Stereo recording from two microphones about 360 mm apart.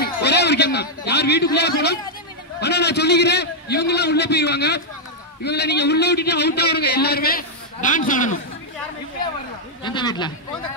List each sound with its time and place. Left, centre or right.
0.0 s a man's voice: left
9.8 s speech: centre